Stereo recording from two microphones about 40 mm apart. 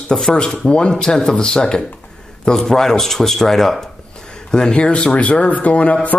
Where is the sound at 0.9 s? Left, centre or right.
Centre.